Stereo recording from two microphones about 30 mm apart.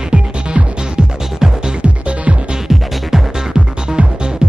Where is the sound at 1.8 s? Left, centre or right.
Right.